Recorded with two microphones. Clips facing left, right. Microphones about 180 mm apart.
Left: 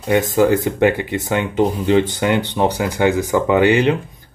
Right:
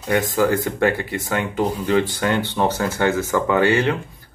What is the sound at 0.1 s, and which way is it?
Speech, 20° left (ahead or behind).